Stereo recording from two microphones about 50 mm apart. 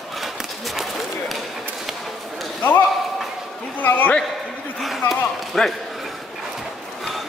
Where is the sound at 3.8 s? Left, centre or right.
Left.